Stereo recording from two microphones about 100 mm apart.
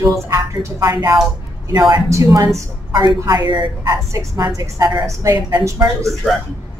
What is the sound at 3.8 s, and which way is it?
Speech, 35° right (ahead or behind).